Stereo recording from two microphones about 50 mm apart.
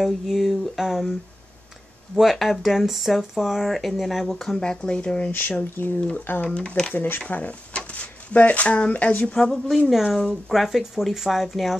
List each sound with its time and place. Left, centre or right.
0.0 s speech: centre
2.1 s speech: centre
4.6 s speech: centre
5.5 s speech: left
5.9 s speech: left
6.9 s speech: left
10.1 s speech: centre